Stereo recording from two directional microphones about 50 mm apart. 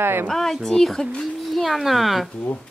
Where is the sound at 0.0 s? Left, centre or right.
Right.